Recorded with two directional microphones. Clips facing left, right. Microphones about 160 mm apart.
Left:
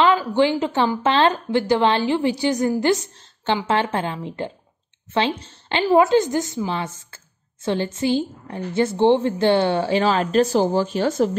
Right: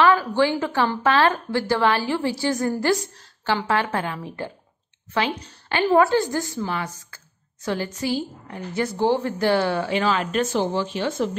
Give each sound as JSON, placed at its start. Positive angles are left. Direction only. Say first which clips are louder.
{"t": 0.0, "sound": "a woman's voice", "louder": "left 1 dB", "side_deg": 15}